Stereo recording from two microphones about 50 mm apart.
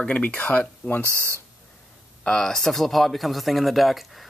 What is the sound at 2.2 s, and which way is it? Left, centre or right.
Speech, centre.